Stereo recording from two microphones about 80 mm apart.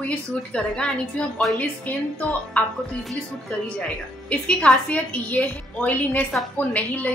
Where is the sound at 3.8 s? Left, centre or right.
Centre.